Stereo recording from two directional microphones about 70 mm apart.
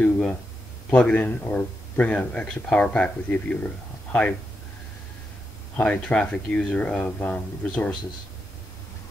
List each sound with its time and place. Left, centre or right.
0.0 s speech: left
5.8 s speech: centre